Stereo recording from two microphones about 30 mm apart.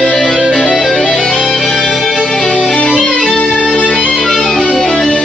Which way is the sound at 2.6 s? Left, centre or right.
Left.